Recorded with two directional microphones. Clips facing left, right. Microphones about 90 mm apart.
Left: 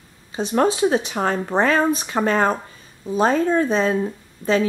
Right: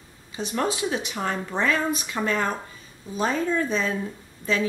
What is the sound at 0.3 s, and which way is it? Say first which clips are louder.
Speech: left 7 dB; 35° left (ahead or behind).